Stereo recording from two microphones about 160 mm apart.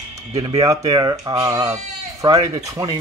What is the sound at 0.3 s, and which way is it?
Speech, 30° right (ahead or behind).